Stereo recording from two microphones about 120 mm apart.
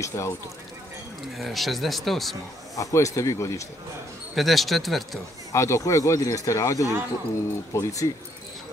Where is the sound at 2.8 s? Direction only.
25° left (ahead or behind).